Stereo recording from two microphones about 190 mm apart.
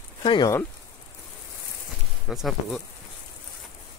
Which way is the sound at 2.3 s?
Centre (ahead or behind).